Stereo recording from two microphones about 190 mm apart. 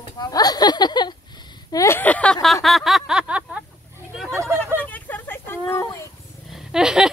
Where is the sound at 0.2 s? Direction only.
20° left (ahead or behind).